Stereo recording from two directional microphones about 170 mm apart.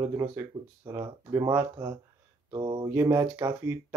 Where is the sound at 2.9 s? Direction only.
15° right (ahead or behind).